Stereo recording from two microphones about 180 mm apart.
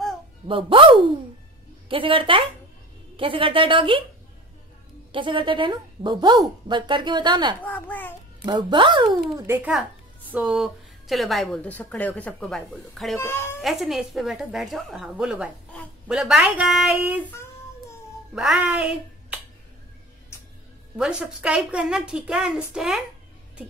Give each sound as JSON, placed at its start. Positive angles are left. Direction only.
{"t": 0.5, "sound": "a woman's voice", "side_deg": -30}
{"t": 5.1, "sound": "a woman's voice", "side_deg": -30}
{"t": 7.6, "sound": "a child's voice", "side_deg": 10}
{"t": 8.5, "sound": "a woman's voice", "side_deg": -25}
{"t": 10.3, "sound": "speech", "side_deg": -5}
{"t": 13.2, "sound": "a child's voice", "side_deg": 15}
{"t": 13.6, "sound": "speech", "side_deg": 0}
{"t": 18.3, "sound": "speech", "side_deg": -5}
{"t": 21.0, "sound": "speech", "side_deg": -5}